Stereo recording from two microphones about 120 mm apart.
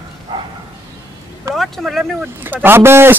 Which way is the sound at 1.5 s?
Centre (ahead or behind).